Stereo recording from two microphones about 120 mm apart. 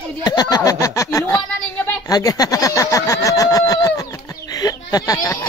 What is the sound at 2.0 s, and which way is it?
Vehicle, 30° left (ahead or behind).